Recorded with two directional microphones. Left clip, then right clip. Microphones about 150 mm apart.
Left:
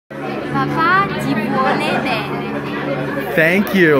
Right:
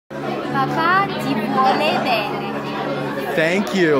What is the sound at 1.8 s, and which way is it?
Speech, 40° right (ahead or behind).